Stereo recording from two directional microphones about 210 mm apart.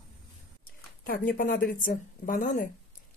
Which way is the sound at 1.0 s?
40° left (ahead or behind).